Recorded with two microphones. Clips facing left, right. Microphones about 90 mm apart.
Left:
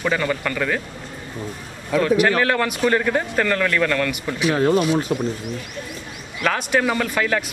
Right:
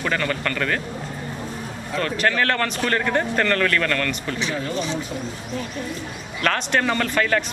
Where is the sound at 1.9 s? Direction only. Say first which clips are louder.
Left 5 dB; 10° left (ahead or behind).